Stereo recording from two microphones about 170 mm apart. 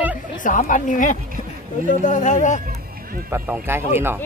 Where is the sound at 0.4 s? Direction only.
50° left (ahead or behind).